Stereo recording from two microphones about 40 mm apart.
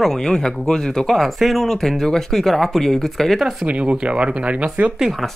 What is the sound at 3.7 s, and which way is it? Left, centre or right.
Speech, right.